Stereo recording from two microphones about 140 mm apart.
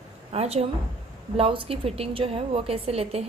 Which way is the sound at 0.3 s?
45° right (ahead or behind).